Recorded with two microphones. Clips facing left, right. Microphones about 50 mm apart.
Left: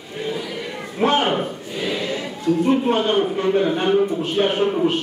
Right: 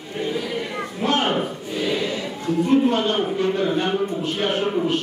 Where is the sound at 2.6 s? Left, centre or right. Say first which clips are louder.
Right 2 dB; left.